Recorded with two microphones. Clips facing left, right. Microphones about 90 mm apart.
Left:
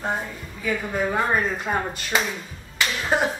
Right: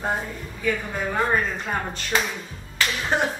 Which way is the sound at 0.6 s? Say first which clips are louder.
Left 1 dB; 5° left (ahead or behind).